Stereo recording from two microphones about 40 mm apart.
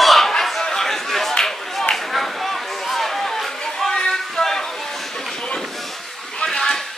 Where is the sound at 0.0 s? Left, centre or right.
Centre.